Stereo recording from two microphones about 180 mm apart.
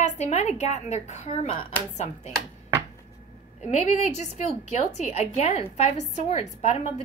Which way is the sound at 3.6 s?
40° left (ahead or behind).